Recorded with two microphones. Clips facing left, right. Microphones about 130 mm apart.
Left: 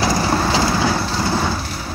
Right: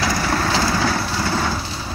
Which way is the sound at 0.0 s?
25° left (ahead or behind).